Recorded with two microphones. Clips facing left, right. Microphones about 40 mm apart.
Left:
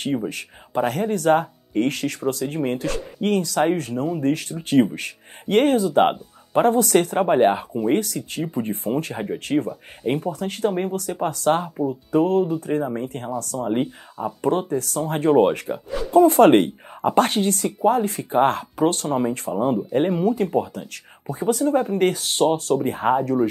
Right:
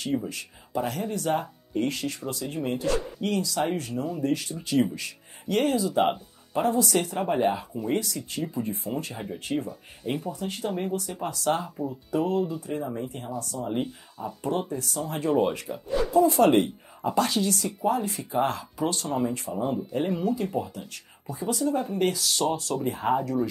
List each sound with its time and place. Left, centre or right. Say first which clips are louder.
0.0 s speech: left 4 dB; left
10.0 s speech: left 7 dB; left
10.3 s speech: left 7 dB; left
11.6 s speech: left 8 dB; left
12.1 s speech: left 7 dB; left
19.5 s speech: left 7 dB; left
20.9 s speech: left 6 dB; left